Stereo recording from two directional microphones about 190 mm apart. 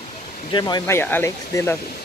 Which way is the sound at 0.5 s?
25° left (ahead or behind).